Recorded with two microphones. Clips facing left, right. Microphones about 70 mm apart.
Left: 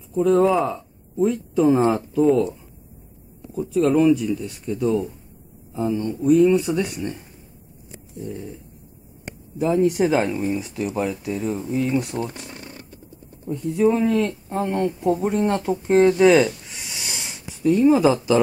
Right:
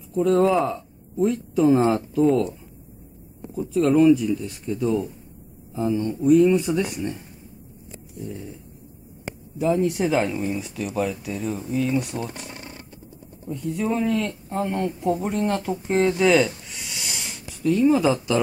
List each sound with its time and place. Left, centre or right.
0.1 s speech: centre
3.5 s speech: centre
8.2 s speech: centre
9.6 s a man's voice: centre
12.0 s speech: centre
13.6 s a man's voice: centre
14.8 s speech: centre
15.3 s a man's voice: centre
17.6 s a man's voice: centre